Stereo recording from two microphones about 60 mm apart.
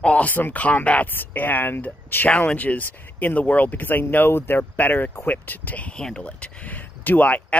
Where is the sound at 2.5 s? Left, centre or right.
Left.